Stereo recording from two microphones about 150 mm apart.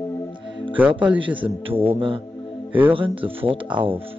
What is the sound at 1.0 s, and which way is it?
Speech, 35° right (ahead or behind).